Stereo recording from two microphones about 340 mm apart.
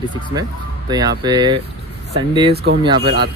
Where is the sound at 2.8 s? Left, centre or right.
Centre.